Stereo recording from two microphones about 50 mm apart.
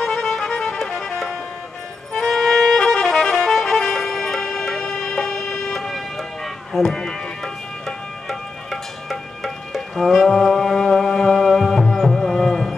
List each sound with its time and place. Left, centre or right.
0.0 s music: centre
7.0 s music: centre
9.9 s music: centre